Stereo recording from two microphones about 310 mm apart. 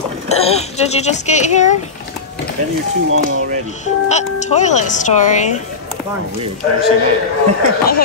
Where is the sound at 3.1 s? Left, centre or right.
Right.